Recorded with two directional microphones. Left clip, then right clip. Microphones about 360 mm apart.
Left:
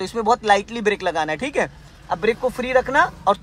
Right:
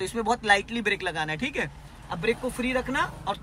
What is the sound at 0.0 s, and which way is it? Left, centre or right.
Speech, centre.